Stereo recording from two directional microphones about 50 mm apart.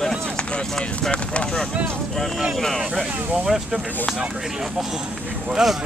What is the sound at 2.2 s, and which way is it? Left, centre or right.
Speech, centre.